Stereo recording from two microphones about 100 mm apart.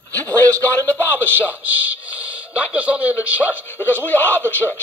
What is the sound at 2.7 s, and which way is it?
Speech, 15° right (ahead or behind).